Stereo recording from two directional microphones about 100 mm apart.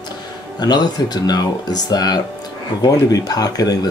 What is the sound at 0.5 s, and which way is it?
Speech, 45° left (ahead or behind).